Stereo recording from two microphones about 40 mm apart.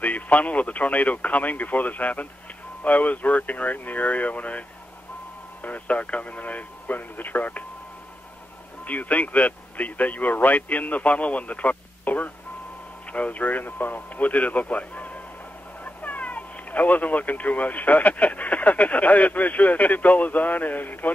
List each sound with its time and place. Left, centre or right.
0.0 s speech: left
8.8 s speech: left